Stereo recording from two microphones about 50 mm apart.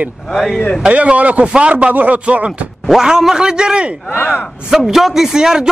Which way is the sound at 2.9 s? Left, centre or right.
Centre.